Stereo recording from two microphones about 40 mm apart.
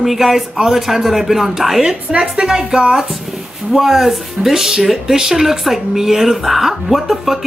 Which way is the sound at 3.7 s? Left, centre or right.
Centre.